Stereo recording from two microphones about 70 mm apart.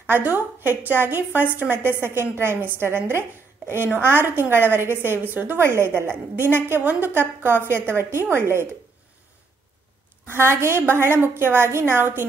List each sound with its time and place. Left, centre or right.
0.1 s a woman's voice: right
10.3 s a woman's voice: right